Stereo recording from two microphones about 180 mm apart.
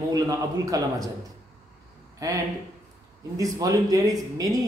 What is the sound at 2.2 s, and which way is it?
Speech, 20° right (ahead or behind).